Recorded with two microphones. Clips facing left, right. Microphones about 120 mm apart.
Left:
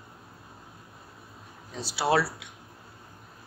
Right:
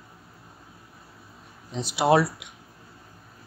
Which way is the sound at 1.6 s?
20° right (ahead or behind).